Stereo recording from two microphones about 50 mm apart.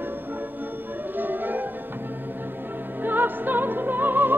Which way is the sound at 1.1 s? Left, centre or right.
Right.